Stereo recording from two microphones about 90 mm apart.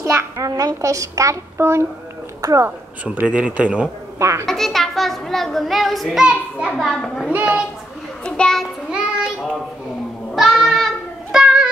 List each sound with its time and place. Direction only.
0.0 s a sound: 30° right (ahead or behind)
0.5 s a child's voice: 40° right (ahead or behind)
3.2 s speech: 15° right (ahead or behind)
4.2 s a child's voice: 35° right (ahead or behind)
4.5 s speech: 5° left (ahead or behind)
7.3 s speech: 15° right (ahead or behind)
8.3 s a child's voice: 10° left (ahead or behind)
8.9 s child singing: 10° right (ahead or behind)
10.3 s music: centre (ahead or behind)